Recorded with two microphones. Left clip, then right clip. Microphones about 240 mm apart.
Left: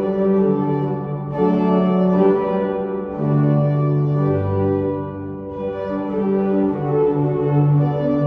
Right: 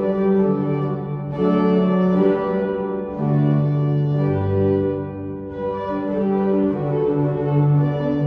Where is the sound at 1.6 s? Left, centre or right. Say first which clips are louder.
Even; centre.